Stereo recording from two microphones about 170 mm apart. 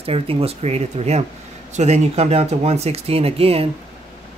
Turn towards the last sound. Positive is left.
turn(degrees=-35)  # may be behind; listen again after turning